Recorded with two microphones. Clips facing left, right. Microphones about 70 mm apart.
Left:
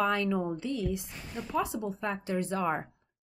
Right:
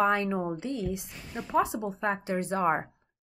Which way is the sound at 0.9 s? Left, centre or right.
Right.